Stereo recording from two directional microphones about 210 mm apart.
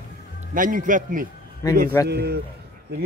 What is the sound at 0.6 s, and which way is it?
Speech, 40° right (ahead or behind).